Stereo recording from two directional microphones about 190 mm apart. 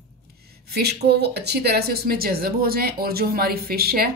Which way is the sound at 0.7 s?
60° right (ahead or behind).